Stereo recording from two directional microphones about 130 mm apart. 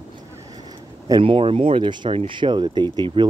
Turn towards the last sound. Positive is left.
turn(degrees=-40)  # may be behind; listen again after turning